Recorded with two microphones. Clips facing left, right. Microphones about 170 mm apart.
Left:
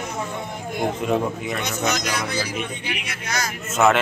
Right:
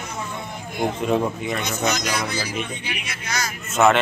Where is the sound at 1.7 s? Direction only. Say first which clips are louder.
Even; 55° left (ahead or behind).